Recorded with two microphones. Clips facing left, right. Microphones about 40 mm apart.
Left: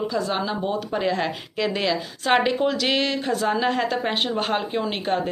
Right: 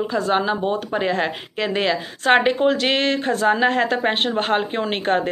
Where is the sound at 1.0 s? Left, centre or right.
Right.